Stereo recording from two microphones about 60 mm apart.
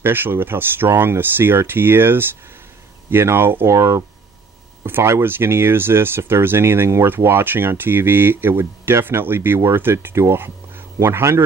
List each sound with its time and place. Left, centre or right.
0.0 s speech: right
3.7 s speech: right
4.8 s speech: right